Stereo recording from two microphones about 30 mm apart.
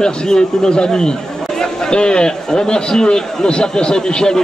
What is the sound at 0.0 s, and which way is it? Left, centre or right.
A man's voice, left.